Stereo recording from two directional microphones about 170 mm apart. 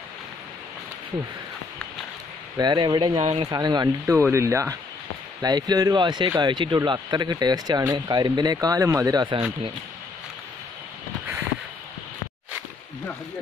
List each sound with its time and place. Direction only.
2.5 s speech: 25° right (ahead or behind)
3.4 s speech: 25° right (ahead or behind)